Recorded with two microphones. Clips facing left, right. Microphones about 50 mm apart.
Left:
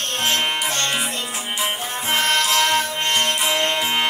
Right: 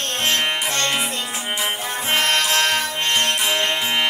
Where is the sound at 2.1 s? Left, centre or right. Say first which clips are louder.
Even; right.